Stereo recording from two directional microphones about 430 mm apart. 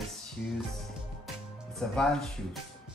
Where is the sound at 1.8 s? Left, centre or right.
Centre.